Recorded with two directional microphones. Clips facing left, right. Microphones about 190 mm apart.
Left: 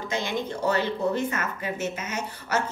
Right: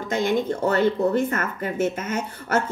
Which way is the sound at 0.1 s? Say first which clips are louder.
Right 8 dB; 50° right (ahead or behind).